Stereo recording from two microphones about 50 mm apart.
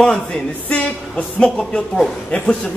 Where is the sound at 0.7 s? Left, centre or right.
Left.